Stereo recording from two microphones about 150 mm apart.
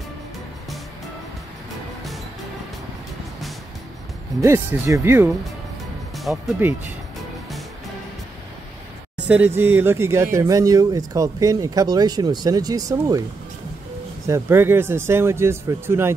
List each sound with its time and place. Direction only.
4.4 s speech: 20° right (ahead or behind)
9.3 s speech: 15° right (ahead or behind)
14.2 s speech: 15° right (ahead or behind)